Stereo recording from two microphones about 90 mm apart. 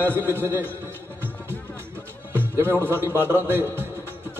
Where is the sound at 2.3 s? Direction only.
25° right (ahead or behind).